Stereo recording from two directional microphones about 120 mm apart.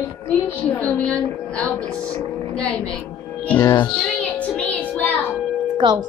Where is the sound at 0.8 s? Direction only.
10° left (ahead or behind).